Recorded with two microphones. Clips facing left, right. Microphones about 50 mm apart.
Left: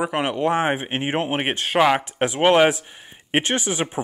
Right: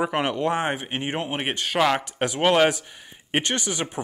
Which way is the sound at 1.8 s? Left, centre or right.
Centre.